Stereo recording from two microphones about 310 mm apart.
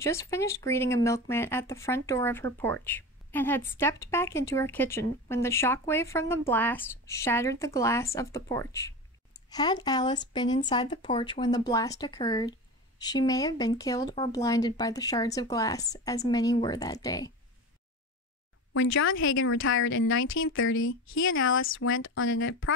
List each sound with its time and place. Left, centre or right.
0.0 s speech: centre
18.7 s speech: left